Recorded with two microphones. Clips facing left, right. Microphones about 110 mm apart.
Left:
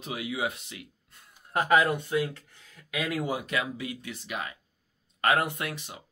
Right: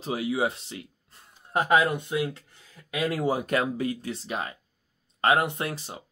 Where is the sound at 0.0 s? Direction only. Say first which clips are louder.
Right 5 dB; 30° right (ahead or behind).